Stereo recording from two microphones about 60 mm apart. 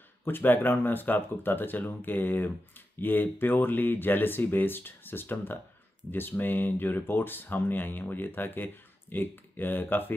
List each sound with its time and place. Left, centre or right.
0.2 s speech: left